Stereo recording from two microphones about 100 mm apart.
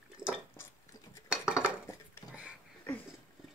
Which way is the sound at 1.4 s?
10° right (ahead or behind).